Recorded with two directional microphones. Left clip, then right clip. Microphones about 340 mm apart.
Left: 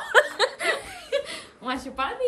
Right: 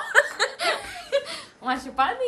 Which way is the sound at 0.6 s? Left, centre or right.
Centre.